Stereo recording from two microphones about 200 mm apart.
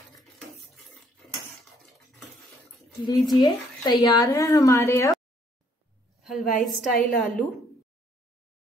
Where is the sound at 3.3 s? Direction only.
20° left (ahead or behind).